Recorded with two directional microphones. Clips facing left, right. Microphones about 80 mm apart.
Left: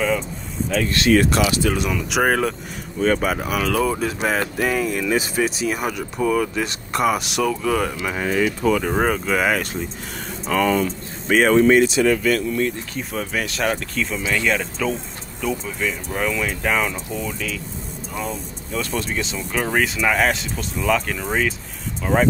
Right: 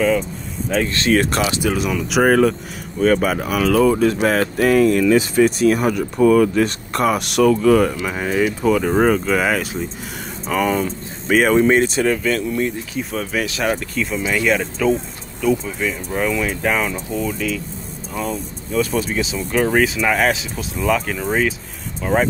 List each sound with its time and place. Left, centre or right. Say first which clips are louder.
0.7 s speech: even; right
1.7 s speech: right 2 dB; centre
10.5 s speech: even; centre
11.7 s speech: left 1 dB; right
12.9 s speech: right 3 dB; centre